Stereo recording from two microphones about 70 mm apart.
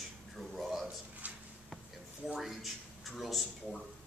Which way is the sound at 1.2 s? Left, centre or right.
Right.